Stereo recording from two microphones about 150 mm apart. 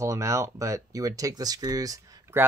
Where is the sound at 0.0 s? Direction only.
20° right (ahead or behind).